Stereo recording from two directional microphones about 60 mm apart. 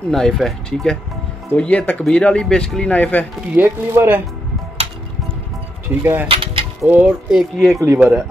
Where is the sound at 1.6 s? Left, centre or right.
Left.